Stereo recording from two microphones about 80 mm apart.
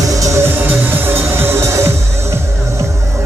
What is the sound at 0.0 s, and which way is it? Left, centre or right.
Music, right.